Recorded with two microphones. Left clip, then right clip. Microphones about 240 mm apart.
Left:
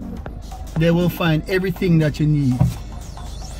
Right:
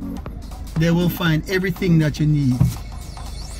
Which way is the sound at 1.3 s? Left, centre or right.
Centre.